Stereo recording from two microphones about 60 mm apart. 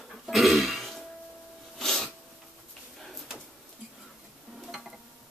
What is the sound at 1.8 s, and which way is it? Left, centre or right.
Sneeze, centre.